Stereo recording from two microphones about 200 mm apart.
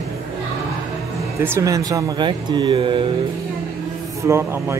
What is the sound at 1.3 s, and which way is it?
Speech, 15° right (ahead or behind).